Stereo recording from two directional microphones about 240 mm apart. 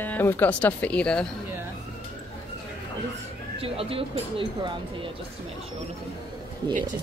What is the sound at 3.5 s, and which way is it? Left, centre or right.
Speech, right.